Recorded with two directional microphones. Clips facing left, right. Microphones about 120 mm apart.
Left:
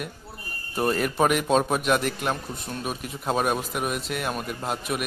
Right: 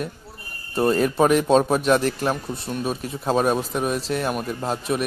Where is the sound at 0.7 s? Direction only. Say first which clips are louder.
Right 5 dB; 25° right (ahead or behind).